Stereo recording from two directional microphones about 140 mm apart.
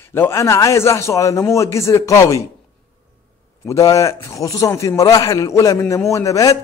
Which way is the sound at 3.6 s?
20° left (ahead or behind).